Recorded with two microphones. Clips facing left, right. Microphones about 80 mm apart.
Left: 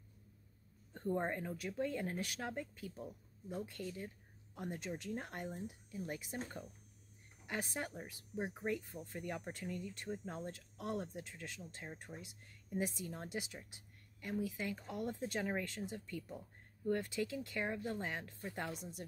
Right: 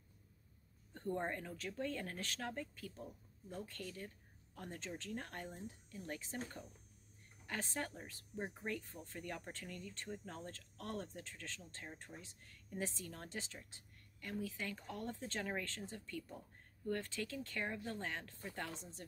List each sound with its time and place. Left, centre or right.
0.9 s speech: centre